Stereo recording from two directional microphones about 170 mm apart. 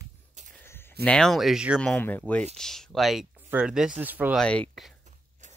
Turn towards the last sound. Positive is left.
turn(degrees=5)  # may be behind; listen again after turning